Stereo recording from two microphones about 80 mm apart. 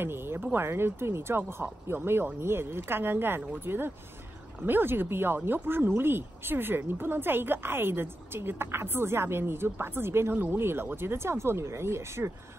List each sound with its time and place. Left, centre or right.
0.0 s speech: right